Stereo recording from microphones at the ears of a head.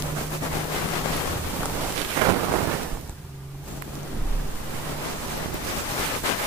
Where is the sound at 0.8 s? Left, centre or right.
Left.